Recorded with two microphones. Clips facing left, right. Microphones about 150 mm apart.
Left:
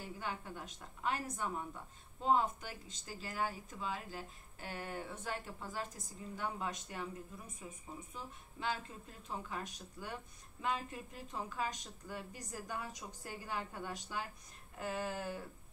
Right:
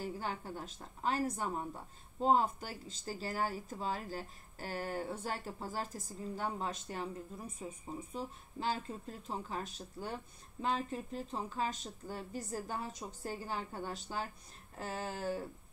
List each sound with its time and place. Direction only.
0.0 s a woman's voice: 35° right (ahead or behind)